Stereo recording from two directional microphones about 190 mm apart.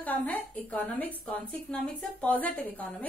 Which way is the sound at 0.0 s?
10° left (ahead or behind).